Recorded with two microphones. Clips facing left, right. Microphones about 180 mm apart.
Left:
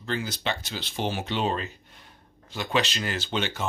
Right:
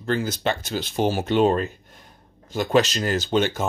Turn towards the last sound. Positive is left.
turn(degrees=-45)  # may be behind; listen again after turning